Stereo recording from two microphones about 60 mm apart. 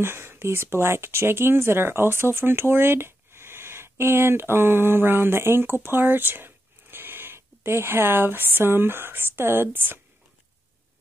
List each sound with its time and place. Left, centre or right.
0.0 s speech: right